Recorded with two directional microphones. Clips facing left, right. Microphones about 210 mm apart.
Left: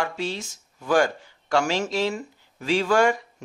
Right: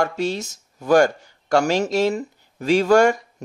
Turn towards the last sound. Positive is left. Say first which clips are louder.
# right 5 dB
turn(degrees=-45)  # may be behind; listen again after turning